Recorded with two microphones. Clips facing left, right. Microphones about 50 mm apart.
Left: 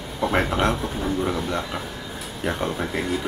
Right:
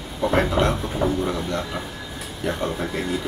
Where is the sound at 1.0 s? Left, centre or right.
Centre.